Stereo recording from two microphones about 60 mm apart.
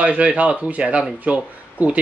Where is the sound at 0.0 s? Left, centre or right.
Right.